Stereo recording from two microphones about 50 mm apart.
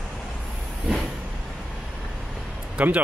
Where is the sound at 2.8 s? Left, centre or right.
Right.